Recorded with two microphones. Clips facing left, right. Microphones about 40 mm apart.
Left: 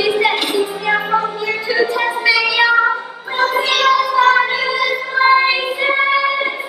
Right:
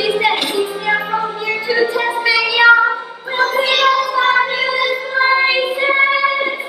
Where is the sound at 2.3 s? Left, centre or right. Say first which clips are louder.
Right 4 dB; centre.